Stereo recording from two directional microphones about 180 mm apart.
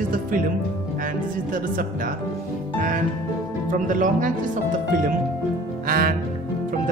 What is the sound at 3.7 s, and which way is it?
Speech, 45° right (ahead or behind).